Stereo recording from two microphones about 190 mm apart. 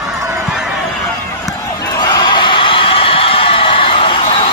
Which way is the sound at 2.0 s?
25° left (ahead or behind).